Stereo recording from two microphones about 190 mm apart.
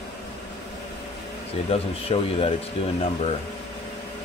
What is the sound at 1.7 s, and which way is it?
Speech, 30° left (ahead or behind).